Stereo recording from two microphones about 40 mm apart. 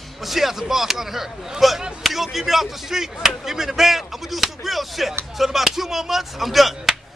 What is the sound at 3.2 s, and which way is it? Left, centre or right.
Chop, centre.